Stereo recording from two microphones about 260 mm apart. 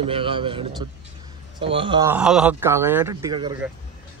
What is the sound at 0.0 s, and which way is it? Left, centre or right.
A man's voice, right.